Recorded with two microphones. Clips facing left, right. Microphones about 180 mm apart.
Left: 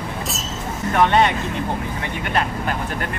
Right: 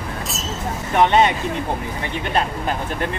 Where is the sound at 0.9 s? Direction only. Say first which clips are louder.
Right 1 dB; 20° right (ahead or behind).